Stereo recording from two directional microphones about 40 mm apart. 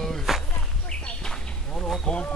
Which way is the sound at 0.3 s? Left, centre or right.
Centre.